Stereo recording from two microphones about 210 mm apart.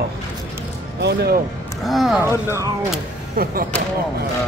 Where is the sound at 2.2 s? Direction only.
15° right (ahead or behind).